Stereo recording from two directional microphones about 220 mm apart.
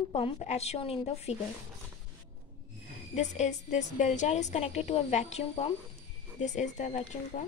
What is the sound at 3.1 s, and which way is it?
A woman's voice, 30° left (ahead or behind).